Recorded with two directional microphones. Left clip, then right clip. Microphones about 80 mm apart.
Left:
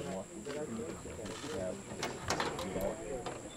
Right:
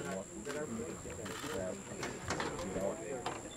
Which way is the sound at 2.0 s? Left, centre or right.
Left.